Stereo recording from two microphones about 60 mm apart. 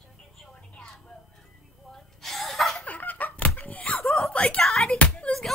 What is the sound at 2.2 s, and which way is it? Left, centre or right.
Chuckle, centre.